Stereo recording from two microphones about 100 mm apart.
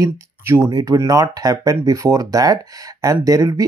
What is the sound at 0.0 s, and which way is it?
Speech, 25° right (ahead or behind).